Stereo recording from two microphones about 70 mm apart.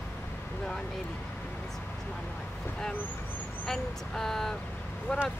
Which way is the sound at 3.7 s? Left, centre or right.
Centre.